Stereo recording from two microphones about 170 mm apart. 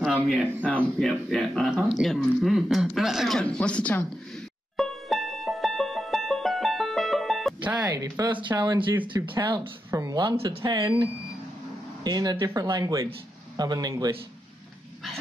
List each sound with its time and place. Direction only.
0.0 s speech: centre (ahead or behind)
4.7 s music: centre (ahead or behind)
7.8 s speech: 20° right (ahead or behind)